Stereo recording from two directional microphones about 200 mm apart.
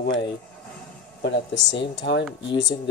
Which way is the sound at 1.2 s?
65° left (ahead or behind).